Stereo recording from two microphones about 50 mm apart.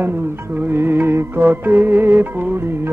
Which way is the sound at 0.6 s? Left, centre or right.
Right.